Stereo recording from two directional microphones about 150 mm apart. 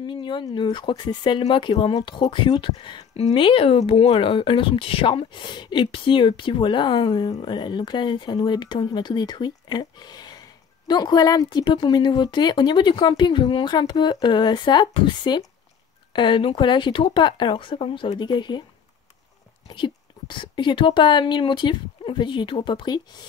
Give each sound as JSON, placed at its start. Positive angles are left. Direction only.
{"t": 0.0, "sound": "speech", "side_deg": 30}
{"t": 19.7, "sound": "speech", "side_deg": 35}